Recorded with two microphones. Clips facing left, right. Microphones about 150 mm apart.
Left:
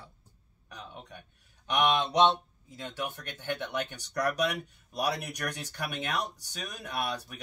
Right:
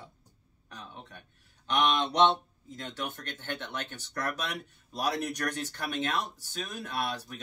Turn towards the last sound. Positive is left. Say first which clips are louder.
# even
turn(degrees=15)  # may be behind; listen again after turning